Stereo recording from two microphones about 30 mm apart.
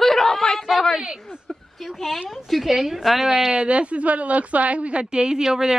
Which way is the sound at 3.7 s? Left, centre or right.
Right.